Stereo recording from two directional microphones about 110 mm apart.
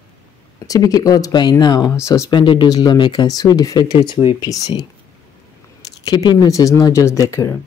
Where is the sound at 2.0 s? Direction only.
25° left (ahead or behind).